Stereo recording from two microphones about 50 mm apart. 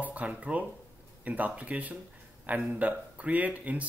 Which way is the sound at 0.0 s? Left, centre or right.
Right.